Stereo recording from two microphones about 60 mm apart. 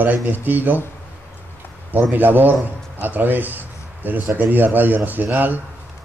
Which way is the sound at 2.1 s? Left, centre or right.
Right.